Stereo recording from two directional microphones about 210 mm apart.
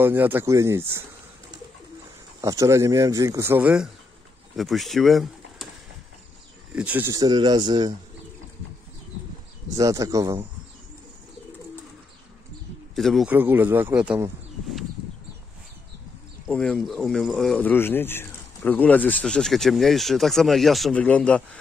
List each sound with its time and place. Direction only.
0.0 s speech: 10° right (ahead or behind)
2.4 s speech: 15° right (ahead or behind)
6.7 s speech: 5° right (ahead or behind)
9.7 s speech: 15° right (ahead or behind)
12.9 s speech: centre (ahead or behind)
16.4 s speech: 5° left (ahead or behind)